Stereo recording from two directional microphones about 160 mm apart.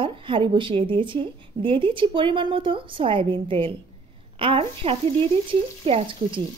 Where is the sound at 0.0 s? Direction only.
30° right (ahead or behind).